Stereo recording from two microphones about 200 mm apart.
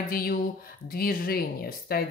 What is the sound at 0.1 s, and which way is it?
Speech, 45° left (ahead or behind).